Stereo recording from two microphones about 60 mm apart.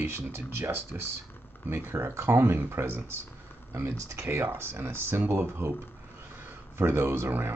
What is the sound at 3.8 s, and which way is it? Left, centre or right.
Speech, right.